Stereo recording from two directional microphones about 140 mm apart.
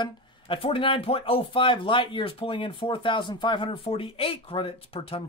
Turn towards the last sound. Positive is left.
turn(degrees=45)  # may be behind; listen again after turning